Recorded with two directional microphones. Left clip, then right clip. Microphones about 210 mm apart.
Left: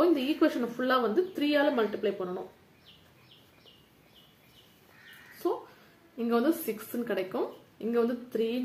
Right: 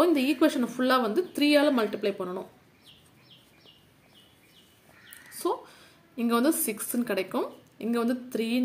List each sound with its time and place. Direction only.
0.0 s speech: 40° right (ahead or behind)
6.1 s speech: 40° right (ahead or behind)